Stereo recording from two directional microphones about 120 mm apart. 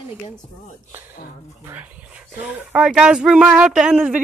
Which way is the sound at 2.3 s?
5° right (ahead or behind).